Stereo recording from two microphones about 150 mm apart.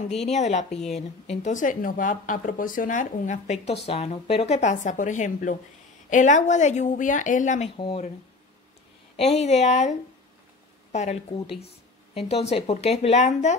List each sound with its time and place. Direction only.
0.1 s speech: 50° left (ahead or behind)
9.1 s speech: 45° left (ahead or behind)